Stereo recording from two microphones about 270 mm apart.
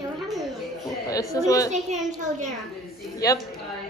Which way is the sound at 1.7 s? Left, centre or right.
Right.